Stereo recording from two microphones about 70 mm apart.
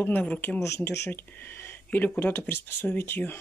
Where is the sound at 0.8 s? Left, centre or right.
Left.